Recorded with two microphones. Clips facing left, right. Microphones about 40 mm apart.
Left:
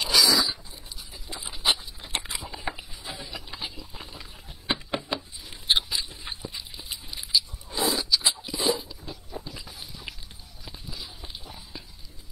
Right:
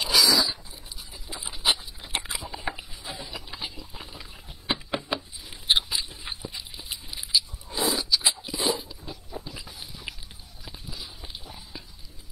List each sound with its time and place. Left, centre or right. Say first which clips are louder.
0.0 s biting: even; centre
1.1 s patter: even; centre
8.5 s biting: left 1 dB; centre
10.6 s a sound: even; centre